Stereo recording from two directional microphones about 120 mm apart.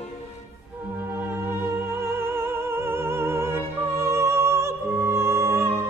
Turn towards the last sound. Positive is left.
turn(degrees=-20)  # may be behind; listen again after turning